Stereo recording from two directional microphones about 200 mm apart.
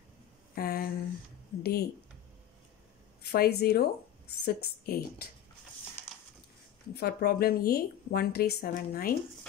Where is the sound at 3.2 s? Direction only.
50° left (ahead or behind).